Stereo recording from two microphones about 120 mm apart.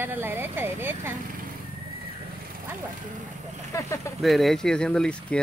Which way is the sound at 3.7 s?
25° left (ahead or behind).